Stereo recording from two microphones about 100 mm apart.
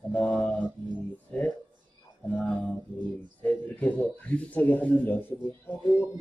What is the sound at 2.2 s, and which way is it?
Music, 15° left (ahead or behind).